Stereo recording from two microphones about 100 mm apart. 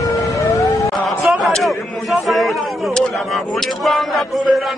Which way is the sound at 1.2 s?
Centre (ahead or behind).